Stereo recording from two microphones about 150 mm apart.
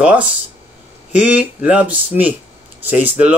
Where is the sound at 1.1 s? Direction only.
10° right (ahead or behind).